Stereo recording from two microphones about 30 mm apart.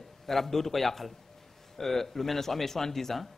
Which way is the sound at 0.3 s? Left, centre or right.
Centre.